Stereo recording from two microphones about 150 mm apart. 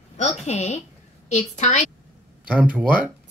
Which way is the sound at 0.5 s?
45° left (ahead or behind).